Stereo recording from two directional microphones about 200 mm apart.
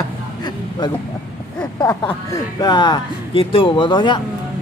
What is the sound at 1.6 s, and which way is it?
Speech, 20° left (ahead or behind).